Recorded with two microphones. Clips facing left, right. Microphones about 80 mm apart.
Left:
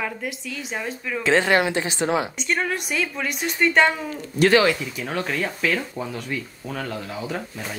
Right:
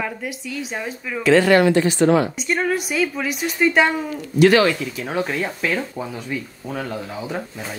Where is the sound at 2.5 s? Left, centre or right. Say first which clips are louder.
Right 2 dB; centre.